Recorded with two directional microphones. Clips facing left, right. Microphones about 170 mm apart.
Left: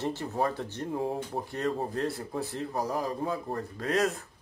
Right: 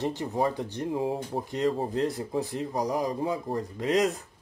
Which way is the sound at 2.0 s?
15° right (ahead or behind).